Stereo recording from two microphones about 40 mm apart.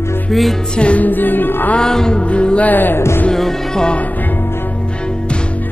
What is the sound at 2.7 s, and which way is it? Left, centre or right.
Music, left.